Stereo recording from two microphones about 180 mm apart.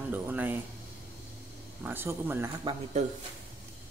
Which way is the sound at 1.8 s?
10° right (ahead or behind).